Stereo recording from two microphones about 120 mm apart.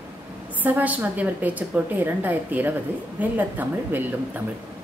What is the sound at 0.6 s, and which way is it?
A woman's voice, 15° right (ahead or behind).